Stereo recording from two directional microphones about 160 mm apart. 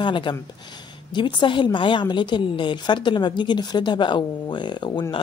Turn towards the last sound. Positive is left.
turn(degrees=30)  # may be behind; listen again after turning